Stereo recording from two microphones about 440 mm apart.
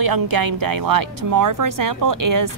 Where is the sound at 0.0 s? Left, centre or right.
Right.